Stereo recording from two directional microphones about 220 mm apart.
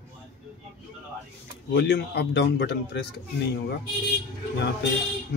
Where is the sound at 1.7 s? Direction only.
50° left (ahead or behind).